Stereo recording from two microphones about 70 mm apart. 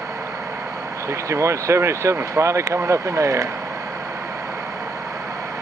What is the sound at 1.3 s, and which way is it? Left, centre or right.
Speech, right.